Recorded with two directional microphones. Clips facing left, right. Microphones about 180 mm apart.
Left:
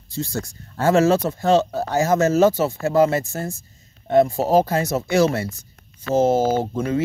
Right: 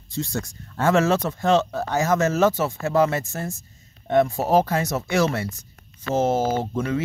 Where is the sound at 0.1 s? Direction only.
35° left (ahead or behind).